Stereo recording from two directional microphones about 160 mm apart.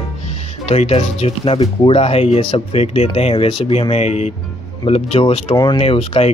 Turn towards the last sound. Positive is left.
turn(degrees=40)  # may be behind; listen again after turning